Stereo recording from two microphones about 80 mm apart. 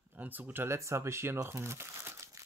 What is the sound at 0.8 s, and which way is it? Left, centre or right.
Speech, right.